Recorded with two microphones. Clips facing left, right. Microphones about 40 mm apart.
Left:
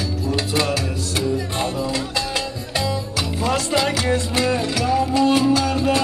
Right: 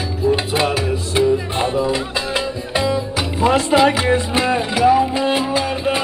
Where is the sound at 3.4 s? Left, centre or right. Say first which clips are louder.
Right 7 dB; right.